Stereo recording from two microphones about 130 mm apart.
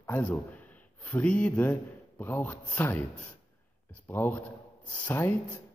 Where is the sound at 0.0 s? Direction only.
15° left (ahead or behind).